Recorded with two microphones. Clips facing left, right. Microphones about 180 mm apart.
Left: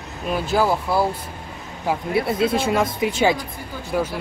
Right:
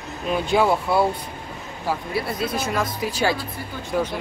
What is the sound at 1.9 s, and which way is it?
Speech, 20° left (ahead or behind).